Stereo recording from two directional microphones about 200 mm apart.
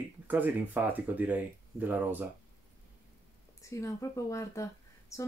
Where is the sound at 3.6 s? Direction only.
15° left (ahead or behind).